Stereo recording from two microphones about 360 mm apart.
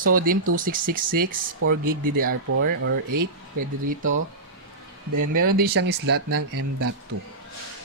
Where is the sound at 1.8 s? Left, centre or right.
Right.